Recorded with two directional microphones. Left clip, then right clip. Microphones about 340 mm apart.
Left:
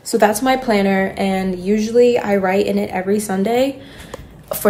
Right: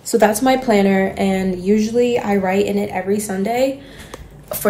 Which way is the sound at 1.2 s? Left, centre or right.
Centre.